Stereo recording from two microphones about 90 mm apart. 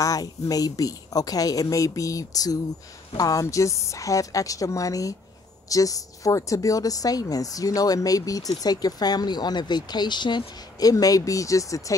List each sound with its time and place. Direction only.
0.0 s a woman's voice: 40° left (ahead or behind)